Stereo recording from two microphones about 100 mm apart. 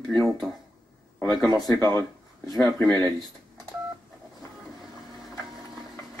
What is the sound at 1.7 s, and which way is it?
Speech, 40° right (ahead or behind).